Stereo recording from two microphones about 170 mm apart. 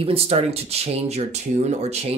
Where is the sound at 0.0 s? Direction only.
35° right (ahead or behind).